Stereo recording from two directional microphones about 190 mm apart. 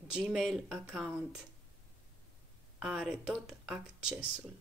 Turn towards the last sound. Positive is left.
turn(degrees=-5)  # may be behind; listen again after turning